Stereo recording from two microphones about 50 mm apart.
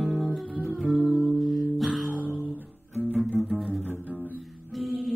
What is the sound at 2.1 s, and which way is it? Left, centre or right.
Guitar, right.